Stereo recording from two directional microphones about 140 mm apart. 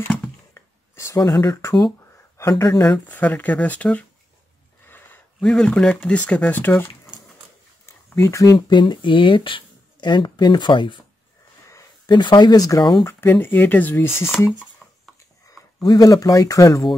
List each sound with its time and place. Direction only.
0.6 s a sound: 20° left (ahead or behind)
1.3 s speech: 20° left (ahead or behind)
2.9 s speech: 10° left (ahead or behind)
8.1 s speech: 20° left (ahead or behind)
8.5 s speech: 35° left (ahead or behind)
13.0 s speech: 15° left (ahead or behind)
14.8 s a sound: 5° left (ahead or behind)
15.8 s speech: 25° left (ahead or behind)